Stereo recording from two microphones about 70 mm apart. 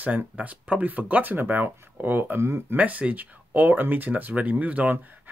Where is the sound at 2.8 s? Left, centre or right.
Right.